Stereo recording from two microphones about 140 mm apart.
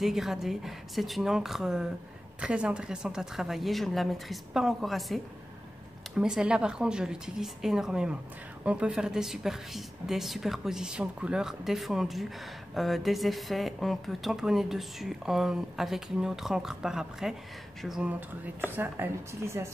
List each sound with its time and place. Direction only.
0.0 s a woman's voice: centre (ahead or behind); by 19.7 s 20° right (ahead or behind)